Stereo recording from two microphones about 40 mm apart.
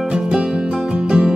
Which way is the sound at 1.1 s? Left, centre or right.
Centre.